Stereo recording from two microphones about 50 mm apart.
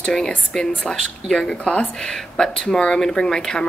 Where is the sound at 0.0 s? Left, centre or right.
Centre.